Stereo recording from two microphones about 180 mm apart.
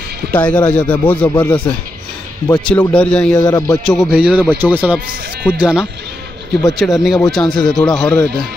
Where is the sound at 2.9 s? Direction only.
5° left (ahead or behind).